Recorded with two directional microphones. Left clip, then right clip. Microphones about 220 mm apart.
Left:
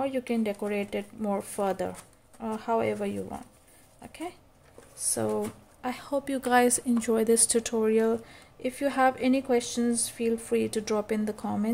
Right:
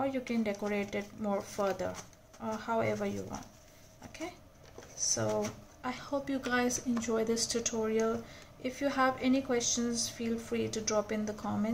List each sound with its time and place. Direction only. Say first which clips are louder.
0.0 s speech: left 4 dB; 40° left (ahead or behind)
5.0 s speech: left 2 dB; 45° left (ahead or behind)